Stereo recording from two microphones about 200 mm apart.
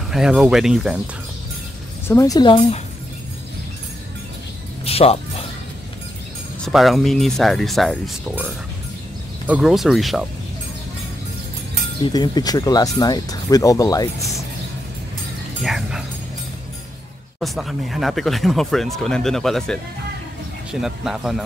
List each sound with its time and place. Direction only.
0.1 s speech: 5° right (ahead or behind)
2.0 s speech: 15° left (ahead or behind)
4.8 s speech: 30° left (ahead or behind)
6.6 s speech: centre (ahead or behind)
12.0 s speech: 20° left (ahead or behind)
15.6 s speech: centre (ahead or behind)
17.4 s speech: centre (ahead or behind)
20.8 s speech: centre (ahead or behind)